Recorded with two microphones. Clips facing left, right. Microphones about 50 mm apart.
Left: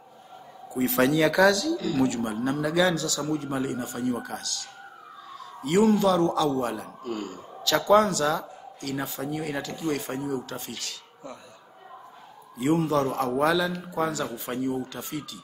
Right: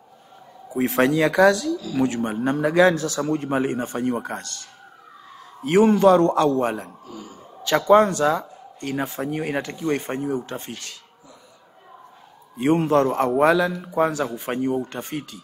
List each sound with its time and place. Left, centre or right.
0.7 s speech: right
2.0 s a man's voice: right
7.1 s a man's voice: left
7.6 s a man's voice: right
12.5 s a man's voice: right